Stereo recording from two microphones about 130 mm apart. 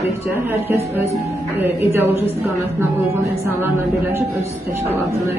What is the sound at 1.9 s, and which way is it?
Speech, 20° right (ahead or behind).